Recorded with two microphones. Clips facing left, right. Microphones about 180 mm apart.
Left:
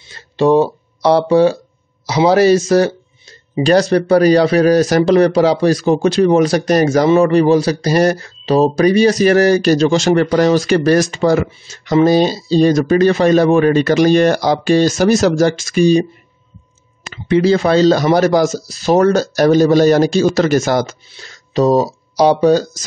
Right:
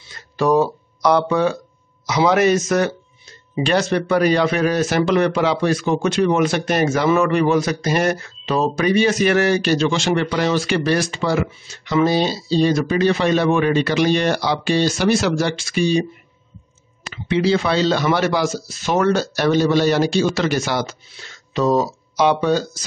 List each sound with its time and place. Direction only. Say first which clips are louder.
0.1 s speech: left 5 dB; 25° left (ahead or behind)